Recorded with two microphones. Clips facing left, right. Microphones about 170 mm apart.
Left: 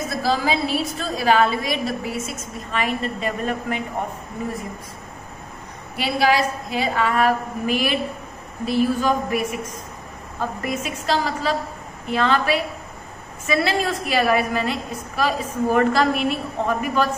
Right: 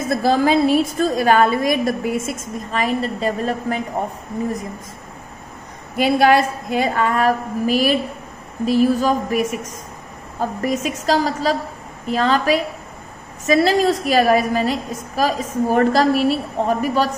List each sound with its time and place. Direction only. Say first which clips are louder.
0.1 s a woman's voice: right 7 dB; 55° right (ahead or behind)
2.7 s a woman's voice: right 3 dB; 40° right (ahead or behind)
5.9 s a woman's voice: right 5 dB; 50° right (ahead or behind)